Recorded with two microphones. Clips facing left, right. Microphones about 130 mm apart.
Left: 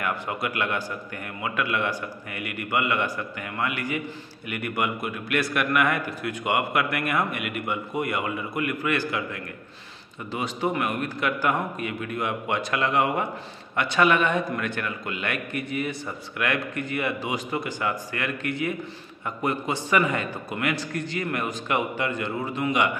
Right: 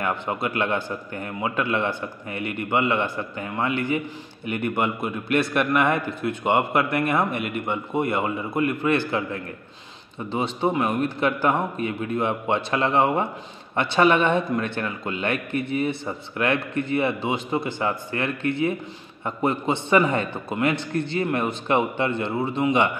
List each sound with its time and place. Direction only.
0.0 s a man's voice: 25° right (ahead or behind)